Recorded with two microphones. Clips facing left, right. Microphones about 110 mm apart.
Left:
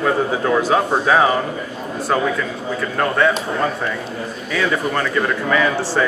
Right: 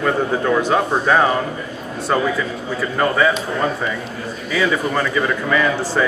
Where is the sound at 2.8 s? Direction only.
Centre (ahead or behind).